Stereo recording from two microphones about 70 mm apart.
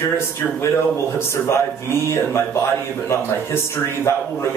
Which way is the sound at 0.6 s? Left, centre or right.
Left.